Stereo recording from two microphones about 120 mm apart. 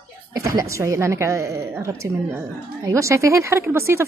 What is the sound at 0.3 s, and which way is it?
A woman's voice, 30° right (ahead or behind).